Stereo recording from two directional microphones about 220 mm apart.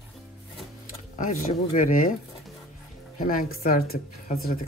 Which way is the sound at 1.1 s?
35° left (ahead or behind).